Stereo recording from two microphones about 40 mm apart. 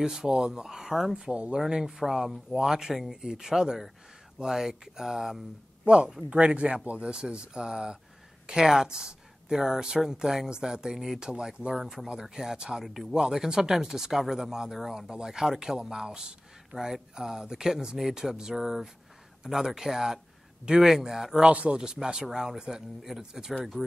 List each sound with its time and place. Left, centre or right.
0.0 s speech: centre
1.1 s speech: right
6.3 s speech: right
11.8 s speech: centre
12.1 s speech: centre
12.8 s speech: centre
13.1 s speech: centre
21.4 s speech: right; by 23.5 s centre